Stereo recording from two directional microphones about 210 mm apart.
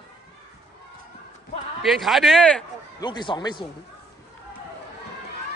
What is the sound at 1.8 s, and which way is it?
Speech, centre (ahead or behind).